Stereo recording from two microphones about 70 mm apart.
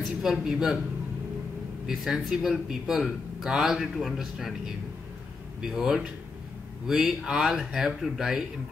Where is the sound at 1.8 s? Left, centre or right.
Centre.